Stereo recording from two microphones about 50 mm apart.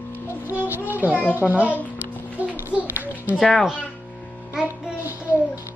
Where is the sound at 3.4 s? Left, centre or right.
Centre.